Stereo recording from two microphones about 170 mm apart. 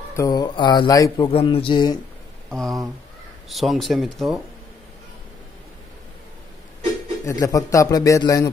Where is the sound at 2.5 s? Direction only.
Centre (ahead or behind).